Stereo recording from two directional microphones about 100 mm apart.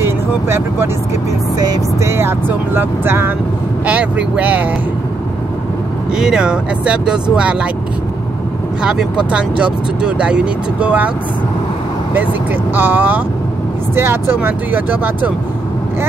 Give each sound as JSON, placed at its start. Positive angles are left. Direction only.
{"t": 0.0, "sound": "speech", "side_deg": -25}
{"t": 1.6, "sound": "music", "side_deg": -40}
{"t": 2.0, "sound": "speech", "side_deg": -25}
{"t": 6.1, "sound": "speech", "side_deg": -5}
{"t": 8.8, "sound": "speech", "side_deg": -10}
{"t": 12.7, "sound": "speech", "side_deg": -20}